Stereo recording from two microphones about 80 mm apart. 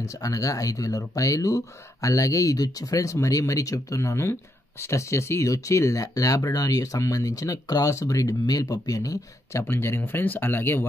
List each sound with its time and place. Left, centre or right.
0.0 s speech: left